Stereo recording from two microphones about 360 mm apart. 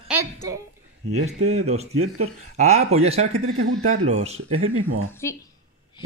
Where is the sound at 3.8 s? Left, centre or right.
Right.